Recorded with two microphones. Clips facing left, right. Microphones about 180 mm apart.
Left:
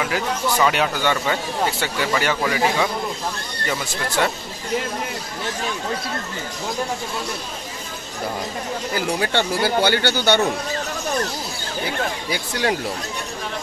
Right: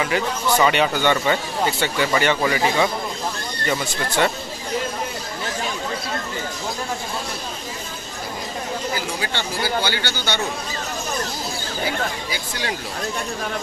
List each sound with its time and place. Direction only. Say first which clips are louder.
0.0 s speech: right 1 dB; centre (ahead or behind)
8.9 s speech: left 5 dB; 55° left (ahead or behind)
12.3 s speech: left 5 dB; 55° left (ahead or behind)